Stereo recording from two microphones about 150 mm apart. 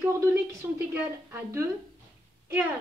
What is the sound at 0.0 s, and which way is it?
A woman's voice, 15° right (ahead or behind).